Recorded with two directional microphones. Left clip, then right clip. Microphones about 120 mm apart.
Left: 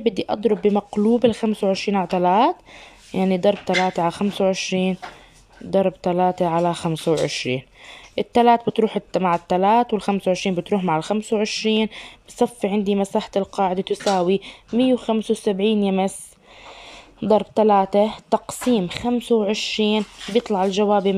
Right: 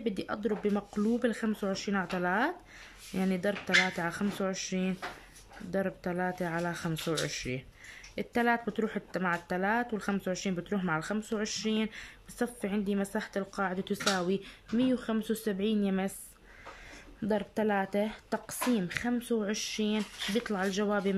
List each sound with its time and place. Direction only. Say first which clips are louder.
0.0 s speech: left 13 dB; 35° left (ahead or behind)
17.2 s speech: left 15 dB; 40° left (ahead or behind)